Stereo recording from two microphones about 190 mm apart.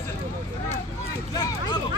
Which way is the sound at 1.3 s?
20° left (ahead or behind).